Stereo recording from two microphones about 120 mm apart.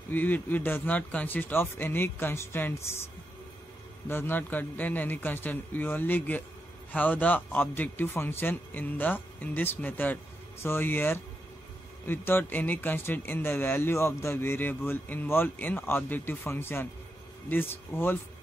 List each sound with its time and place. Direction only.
0.1 s a man's voice: 15° left (ahead or behind)
4.1 s a man's voice: 20° left (ahead or behind)